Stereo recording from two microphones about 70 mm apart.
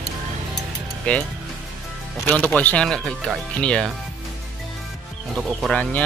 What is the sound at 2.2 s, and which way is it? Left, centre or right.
Speech, left.